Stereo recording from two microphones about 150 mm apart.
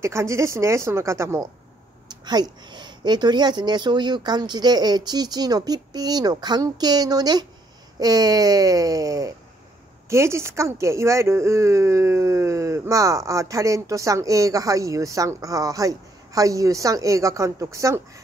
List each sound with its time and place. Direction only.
0.0 s speech: 20° right (ahead or behind)